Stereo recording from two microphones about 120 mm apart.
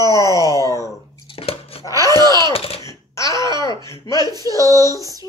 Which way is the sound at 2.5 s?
55° left (ahead or behind).